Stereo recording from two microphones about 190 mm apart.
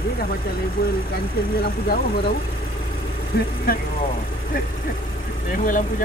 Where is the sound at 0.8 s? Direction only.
55° left (ahead or behind).